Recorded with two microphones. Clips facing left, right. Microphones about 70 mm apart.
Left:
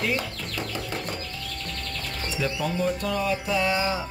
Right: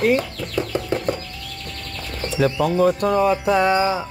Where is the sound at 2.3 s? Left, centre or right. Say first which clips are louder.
Right 10 dB; right.